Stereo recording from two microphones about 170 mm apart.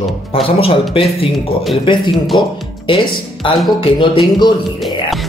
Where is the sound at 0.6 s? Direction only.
35° left (ahead or behind).